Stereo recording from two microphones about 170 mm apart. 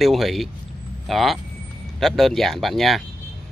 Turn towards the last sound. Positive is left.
turn(degrees=0)  # may be behind; listen again after turning